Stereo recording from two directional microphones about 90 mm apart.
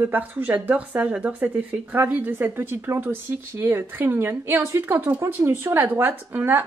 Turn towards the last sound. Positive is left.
turn(degrees=-20)  # may be behind; listen again after turning